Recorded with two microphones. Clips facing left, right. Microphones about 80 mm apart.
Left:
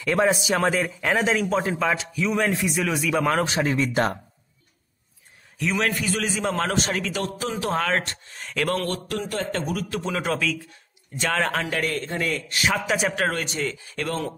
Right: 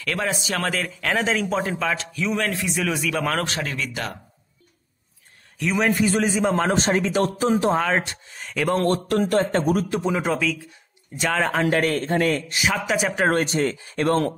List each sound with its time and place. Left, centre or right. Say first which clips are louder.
0.0 s a man's voice: left 5 dB; centre
3.5 s speech: left 6 dB; left
5.8 s a man's voice: right 6 dB; centre
6.7 s a man's voice: right 5 dB; right
7.7 s speech: right 2 dB; centre
8.7 s speech: right 6 dB; right
9.1 s speech: right 8 dB; right
9.4 s speech: right 6 dB; right
10.0 s speech: right 3 dB; centre
11.6 s speech: right 6 dB; right
12.5 s speech: right 1 dB; centre
13.3 s speech: right 6 dB; right